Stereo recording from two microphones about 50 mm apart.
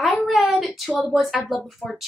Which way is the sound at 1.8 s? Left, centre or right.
Left.